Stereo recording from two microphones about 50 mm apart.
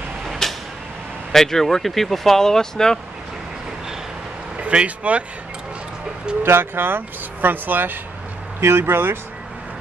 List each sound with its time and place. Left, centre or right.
0.4 s creak: centre
1.3 s speech: centre
4.6 s speech: right
6.4 s speech: right
8.5 s speech: right